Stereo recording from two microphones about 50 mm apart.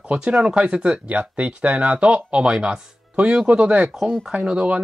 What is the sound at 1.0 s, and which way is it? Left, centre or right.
Speech, right.